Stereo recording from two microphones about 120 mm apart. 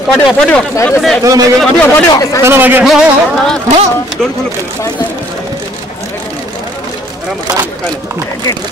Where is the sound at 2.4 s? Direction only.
20° right (ahead or behind).